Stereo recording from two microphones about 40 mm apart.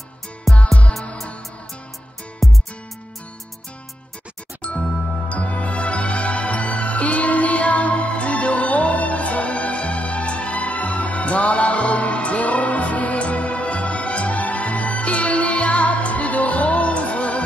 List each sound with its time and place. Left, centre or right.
0.5 s music: centre
2.4 s music: centre
5.3 s music: left